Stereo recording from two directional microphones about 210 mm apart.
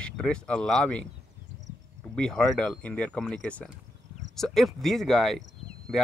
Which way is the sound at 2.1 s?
5° left (ahead or behind).